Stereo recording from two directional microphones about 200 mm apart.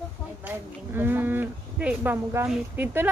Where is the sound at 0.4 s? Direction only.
10° right (ahead or behind).